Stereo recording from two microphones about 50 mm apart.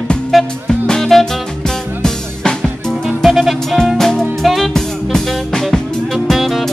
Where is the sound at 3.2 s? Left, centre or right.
Centre.